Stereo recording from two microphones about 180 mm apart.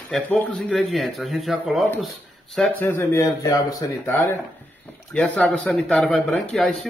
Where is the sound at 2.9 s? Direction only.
15° left (ahead or behind).